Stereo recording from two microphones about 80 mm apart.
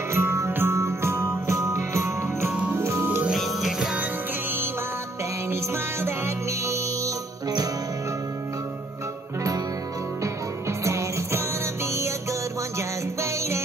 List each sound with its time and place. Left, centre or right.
0.1 s music: right
2.7 s organ: right
3.3 s music: centre
3.9 s music: right
7.4 s music: right
10.8 s music: right